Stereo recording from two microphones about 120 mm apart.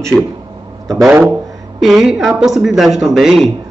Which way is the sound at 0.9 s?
5° right (ahead or behind).